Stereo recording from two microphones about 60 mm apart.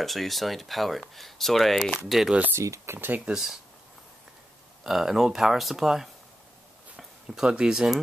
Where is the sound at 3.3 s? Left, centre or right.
Centre.